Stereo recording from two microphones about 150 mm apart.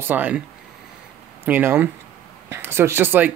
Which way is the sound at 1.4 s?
10° right (ahead or behind).